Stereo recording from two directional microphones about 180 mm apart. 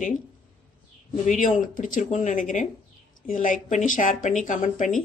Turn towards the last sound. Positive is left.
turn(degrees=45)  # may be behind; listen again after turning